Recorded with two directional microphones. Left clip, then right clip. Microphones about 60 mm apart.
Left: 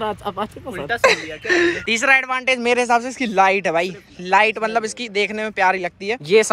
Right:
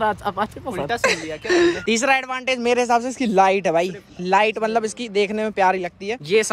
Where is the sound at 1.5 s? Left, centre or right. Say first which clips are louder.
Left 1 dB; right.